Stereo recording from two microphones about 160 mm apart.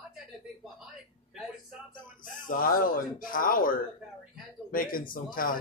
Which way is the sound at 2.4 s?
60° left (ahead or behind).